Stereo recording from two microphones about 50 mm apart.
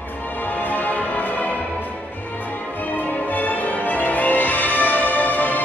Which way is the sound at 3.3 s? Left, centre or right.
Left.